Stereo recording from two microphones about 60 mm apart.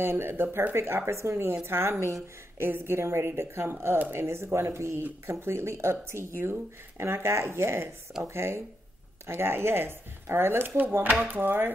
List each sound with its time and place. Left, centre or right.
0.0 s speech: right
11.1 s speech: right